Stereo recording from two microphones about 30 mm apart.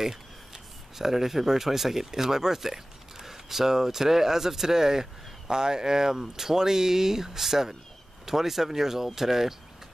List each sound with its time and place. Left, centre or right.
0.0 s speech: centre